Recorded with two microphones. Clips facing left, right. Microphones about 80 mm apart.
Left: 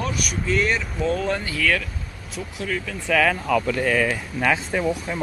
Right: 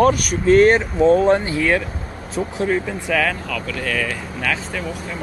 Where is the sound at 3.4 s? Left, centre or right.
Left.